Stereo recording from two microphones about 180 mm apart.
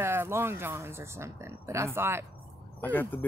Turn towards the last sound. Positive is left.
turn(degrees=10)  # may be behind; listen again after turning